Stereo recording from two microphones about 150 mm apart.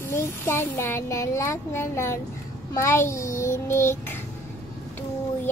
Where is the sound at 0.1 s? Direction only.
15° left (ahead or behind).